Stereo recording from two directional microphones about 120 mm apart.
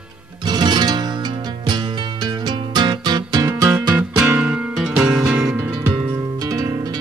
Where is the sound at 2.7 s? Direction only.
35° right (ahead or behind).